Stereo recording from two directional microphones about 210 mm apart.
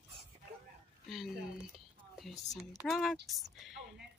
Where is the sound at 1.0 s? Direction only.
Centre (ahead or behind).